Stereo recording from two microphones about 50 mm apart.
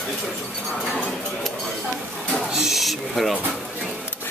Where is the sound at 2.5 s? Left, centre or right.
Centre.